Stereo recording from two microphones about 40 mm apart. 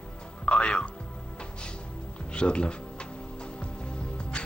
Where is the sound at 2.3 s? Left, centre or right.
Left.